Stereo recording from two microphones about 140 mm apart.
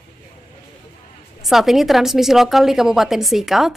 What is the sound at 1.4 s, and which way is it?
A woman's voice, centre (ahead or behind).